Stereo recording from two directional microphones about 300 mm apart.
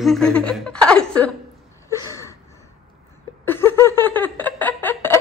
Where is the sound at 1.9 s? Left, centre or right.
Centre.